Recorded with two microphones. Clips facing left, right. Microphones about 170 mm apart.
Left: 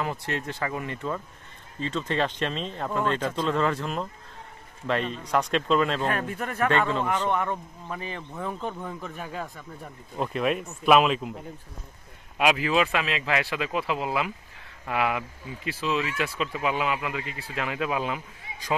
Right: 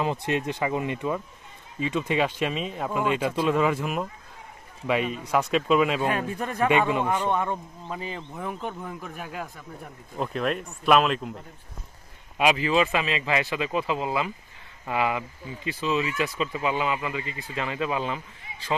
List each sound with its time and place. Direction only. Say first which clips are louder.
0.0 s speech: right 4 dB; 20° right (ahead or behind)
8.4 s speech: left 2 dB; 5° right (ahead or behind)